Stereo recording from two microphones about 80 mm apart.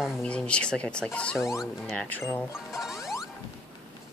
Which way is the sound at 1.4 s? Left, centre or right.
Centre.